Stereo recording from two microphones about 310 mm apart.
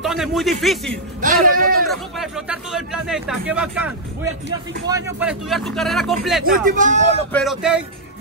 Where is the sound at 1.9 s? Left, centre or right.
Centre.